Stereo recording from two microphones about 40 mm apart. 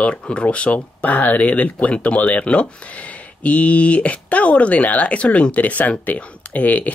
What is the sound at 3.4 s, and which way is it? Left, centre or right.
Speech, left.